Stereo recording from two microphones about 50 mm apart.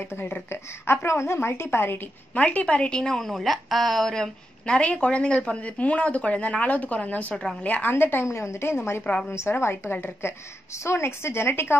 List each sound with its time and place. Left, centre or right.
0.0 s a woman's voice: left
1.0 s speech: left
2.3 s a woman's voice: left
7.9 s a woman's voice: left
8.3 s speech: left
9.8 s a woman's voice: left
10.7 s speech: left